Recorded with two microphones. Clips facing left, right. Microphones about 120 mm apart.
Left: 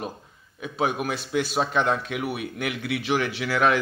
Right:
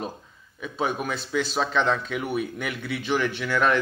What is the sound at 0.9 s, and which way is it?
Speech, 15° left (ahead or behind).